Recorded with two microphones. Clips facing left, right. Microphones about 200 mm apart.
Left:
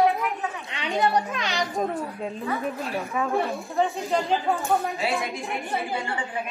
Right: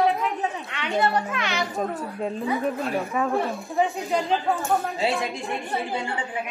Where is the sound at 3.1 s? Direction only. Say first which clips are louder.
Left 2 dB; centre (ahead or behind).